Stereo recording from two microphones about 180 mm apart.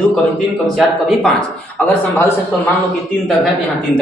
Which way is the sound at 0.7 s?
Centre (ahead or behind).